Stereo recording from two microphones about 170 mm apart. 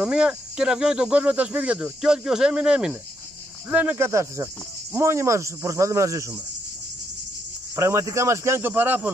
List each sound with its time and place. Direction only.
0.0 s speech: 5° right (ahead or behind)
7.7 s speech: 20° right (ahead or behind)